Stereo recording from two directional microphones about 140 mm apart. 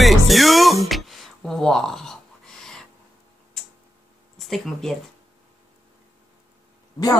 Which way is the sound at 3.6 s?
Centre (ahead or behind).